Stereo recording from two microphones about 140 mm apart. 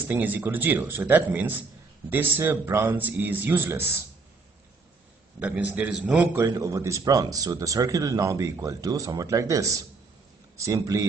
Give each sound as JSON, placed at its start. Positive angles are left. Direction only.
{"t": 0.1, "sound": "a man's voice", "side_deg": -15}
{"t": 5.4, "sound": "a man's voice", "side_deg": -10}
{"t": 6.4, "sound": "speech", "side_deg": -25}